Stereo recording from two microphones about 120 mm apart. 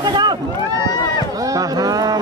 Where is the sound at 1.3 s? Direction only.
30° right (ahead or behind).